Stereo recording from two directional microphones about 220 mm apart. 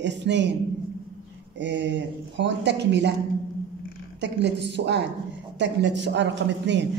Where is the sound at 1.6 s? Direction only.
55° right (ahead or behind).